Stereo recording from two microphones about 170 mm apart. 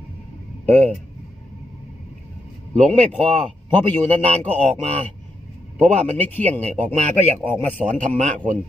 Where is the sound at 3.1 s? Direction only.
35° right (ahead or behind).